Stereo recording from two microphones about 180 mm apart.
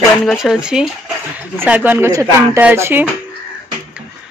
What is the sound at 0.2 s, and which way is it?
Speech, centre (ahead or behind).